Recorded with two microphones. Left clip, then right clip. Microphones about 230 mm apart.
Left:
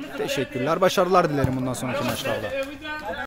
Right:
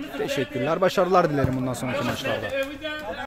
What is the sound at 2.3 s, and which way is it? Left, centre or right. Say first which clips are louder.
Speech: even; right.